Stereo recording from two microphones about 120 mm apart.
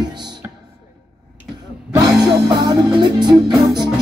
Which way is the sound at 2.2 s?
35° right (ahead or behind).